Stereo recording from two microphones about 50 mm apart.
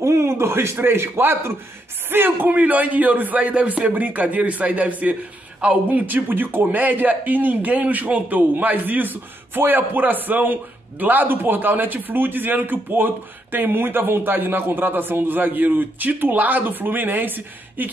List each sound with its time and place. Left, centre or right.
0.0 s a man's voice: right
2.0 s a man's voice: right